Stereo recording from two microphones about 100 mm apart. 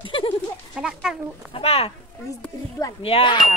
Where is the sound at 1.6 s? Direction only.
80° left.